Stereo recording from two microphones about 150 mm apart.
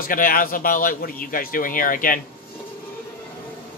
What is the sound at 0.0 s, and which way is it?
A man's voice, 70° left (ahead or behind).